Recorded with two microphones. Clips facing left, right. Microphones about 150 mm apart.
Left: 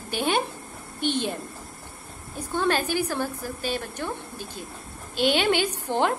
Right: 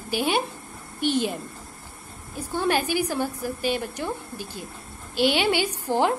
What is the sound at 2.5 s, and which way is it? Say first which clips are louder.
A woman's voice: right 1 dB; 10° right (ahead or behind).